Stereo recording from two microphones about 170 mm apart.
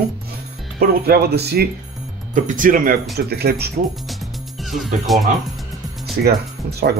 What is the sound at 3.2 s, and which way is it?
Speech, 70° right (ahead or behind).